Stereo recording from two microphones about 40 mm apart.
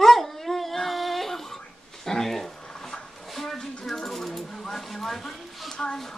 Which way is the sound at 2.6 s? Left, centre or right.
Centre.